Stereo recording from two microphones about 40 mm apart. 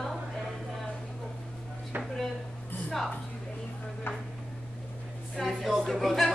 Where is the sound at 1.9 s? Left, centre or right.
Right.